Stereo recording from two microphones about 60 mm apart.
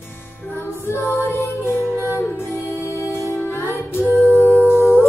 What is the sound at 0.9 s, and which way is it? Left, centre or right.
Music, left.